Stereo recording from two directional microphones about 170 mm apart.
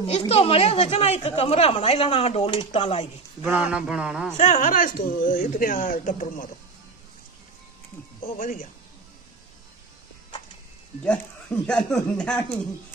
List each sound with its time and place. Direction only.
0.0 s speech: 35° left (ahead or behind)
3.7 s speech: 5° right (ahead or behind)
4.4 s speech: 45° left (ahead or behind)
8.2 s speech: 50° left (ahead or behind)
11.6 s speech: 5° left (ahead or behind)